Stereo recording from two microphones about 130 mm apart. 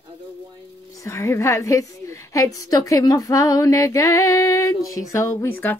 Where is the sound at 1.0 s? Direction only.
20° left (ahead or behind).